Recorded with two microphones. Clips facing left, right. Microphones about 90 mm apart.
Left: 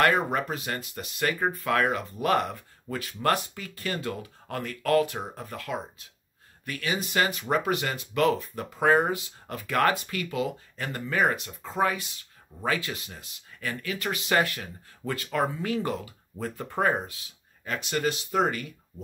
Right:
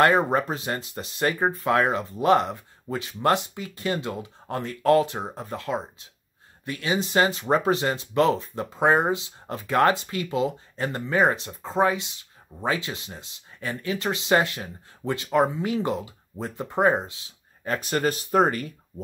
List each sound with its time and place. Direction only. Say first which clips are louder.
0.0 s speech: right 4 dB; 30° right (ahead or behind)
17.6 s speech: right 4 dB; 40° right (ahead or behind)